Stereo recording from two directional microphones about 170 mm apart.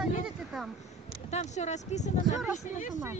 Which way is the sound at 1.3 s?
40° left (ahead or behind).